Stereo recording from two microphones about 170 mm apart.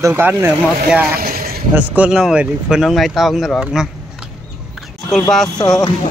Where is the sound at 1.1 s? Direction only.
60° right (ahead or behind).